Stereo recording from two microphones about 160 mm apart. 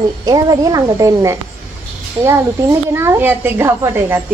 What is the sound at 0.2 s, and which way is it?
Speech, 25° right (ahead or behind).